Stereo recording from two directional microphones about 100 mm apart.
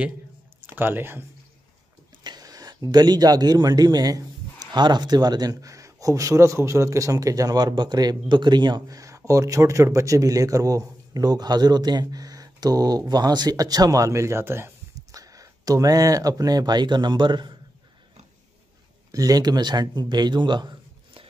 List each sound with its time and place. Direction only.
0.7 s speech: 20° right (ahead or behind)
2.2 s a man's voice: 40° right (ahead or behind)
19.1 s a man's voice: 40° right (ahead or behind); by 21.3 s 55° right (ahead or behind)